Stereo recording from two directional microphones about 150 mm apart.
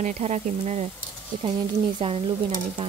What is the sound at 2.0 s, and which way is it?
Speech, 35° right (ahead or behind).